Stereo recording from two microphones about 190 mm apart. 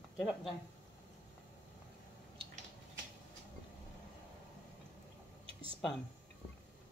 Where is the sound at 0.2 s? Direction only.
Centre (ahead or behind).